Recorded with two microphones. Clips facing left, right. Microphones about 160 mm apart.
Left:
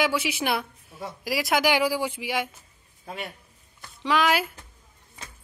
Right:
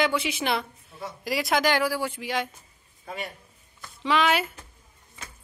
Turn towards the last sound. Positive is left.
turn(degrees=0)  # may be behind; listen again after turning